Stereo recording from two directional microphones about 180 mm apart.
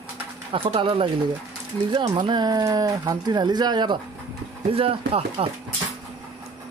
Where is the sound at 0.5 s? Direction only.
30° right (ahead or behind).